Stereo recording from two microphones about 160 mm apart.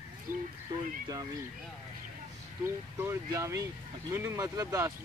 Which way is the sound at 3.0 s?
15° right (ahead or behind).